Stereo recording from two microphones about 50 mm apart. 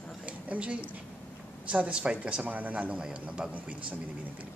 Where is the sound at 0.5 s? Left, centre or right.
Right.